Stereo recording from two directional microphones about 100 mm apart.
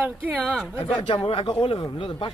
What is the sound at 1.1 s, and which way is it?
Speech, 60° left (ahead or behind).